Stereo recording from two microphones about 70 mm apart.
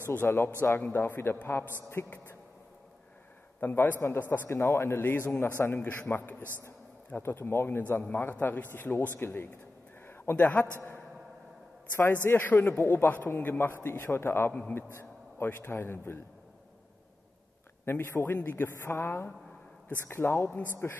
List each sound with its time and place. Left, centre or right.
0.0 s a man's voice: left
3.6 s a man's voice: left
10.0 s a sound: left
10.3 s a man's voice: left
12.3 s a man's voice: left
17.8 s a man's voice: left